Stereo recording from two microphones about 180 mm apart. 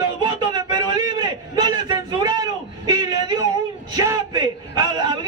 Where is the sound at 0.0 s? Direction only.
25° right (ahead or behind).